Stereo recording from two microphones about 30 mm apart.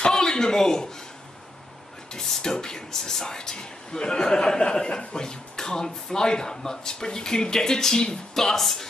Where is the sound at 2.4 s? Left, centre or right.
Left.